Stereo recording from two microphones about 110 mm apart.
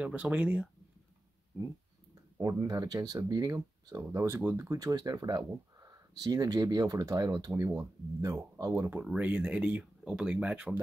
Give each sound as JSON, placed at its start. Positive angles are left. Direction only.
{"t": 0.0, "sound": "speech", "side_deg": -10}
{"t": 2.3, "sound": "speech", "side_deg": -30}
{"t": 4.4, "sound": "speech", "side_deg": -15}
{"t": 4.6, "sound": "speech", "side_deg": -35}
{"t": 9.0, "sound": "speech", "side_deg": -10}